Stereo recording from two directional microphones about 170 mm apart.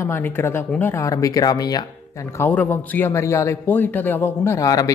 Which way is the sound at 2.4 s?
10° left (ahead or behind).